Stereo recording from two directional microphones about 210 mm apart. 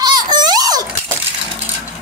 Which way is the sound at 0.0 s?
20° right (ahead or behind).